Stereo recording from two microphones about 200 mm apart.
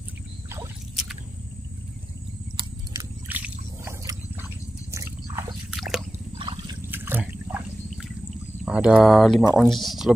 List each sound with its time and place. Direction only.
3.3 s a sound: 10° right (ahead or behind)
4.9 s drip: 15° right (ahead or behind)
5.7 s drip: centre (ahead or behind)
6.3 s trickle: 25° right (ahead or behind)
6.9 s water: 10° right (ahead or behind)
8.6 s speech: 5° right (ahead or behind)